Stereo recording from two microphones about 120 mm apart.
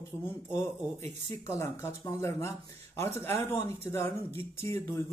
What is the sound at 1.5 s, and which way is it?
Speech, 25° left (ahead or behind).